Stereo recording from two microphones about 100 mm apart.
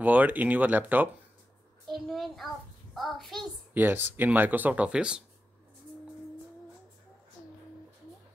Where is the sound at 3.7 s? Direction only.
20° right (ahead or behind).